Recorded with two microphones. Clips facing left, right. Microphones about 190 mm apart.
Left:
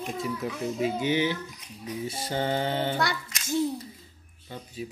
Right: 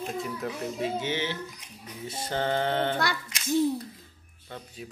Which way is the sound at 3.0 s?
55° right (ahead or behind).